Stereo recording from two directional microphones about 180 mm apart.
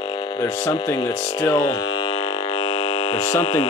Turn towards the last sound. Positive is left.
turn(degrees=30)  # may be behind; listen again after turning